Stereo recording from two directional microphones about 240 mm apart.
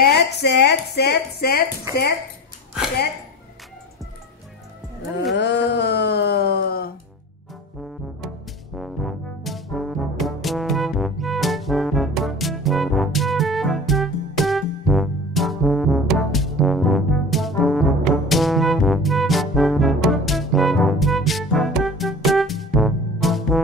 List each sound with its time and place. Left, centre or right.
0.0 s speech: left
5.3 s a sound: left
8.7 s brass instrument: centre